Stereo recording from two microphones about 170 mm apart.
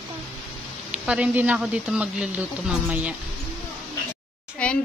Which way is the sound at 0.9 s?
5° right (ahead or behind).